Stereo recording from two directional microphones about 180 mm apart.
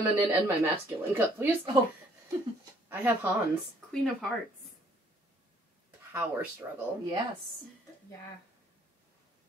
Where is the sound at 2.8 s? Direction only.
10° right (ahead or behind).